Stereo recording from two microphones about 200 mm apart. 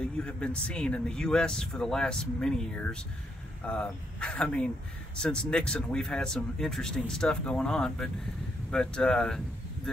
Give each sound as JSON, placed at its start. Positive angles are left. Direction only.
{"t": 0.0, "sound": "speech", "side_deg": 5}